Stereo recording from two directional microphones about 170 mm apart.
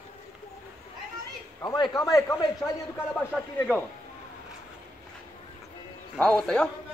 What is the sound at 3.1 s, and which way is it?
Speech, 5° left (ahead or behind).